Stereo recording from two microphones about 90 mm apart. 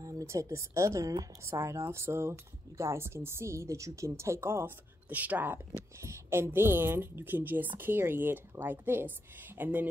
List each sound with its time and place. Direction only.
0.0 s speech: 35° right (ahead or behind); by 9.8 s 20° right (ahead or behind)